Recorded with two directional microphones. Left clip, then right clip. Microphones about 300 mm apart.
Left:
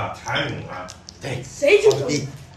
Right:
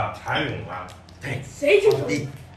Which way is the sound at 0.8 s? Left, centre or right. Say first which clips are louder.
Left 2 dB; centre.